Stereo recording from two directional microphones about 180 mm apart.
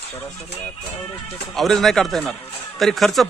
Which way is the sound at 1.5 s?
Centre (ahead or behind).